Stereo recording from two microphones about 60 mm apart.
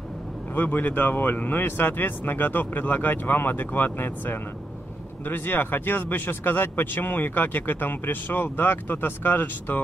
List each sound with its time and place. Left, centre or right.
0.6 s speech: left